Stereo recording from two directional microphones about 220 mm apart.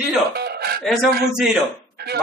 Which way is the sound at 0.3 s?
45° right (ahead or behind).